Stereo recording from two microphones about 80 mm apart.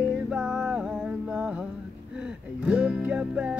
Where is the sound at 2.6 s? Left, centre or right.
Centre.